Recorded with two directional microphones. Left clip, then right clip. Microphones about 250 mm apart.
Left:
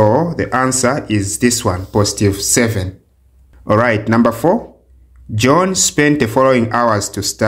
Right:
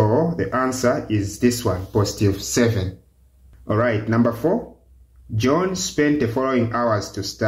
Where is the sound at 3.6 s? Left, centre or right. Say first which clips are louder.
Left 7 dB; left.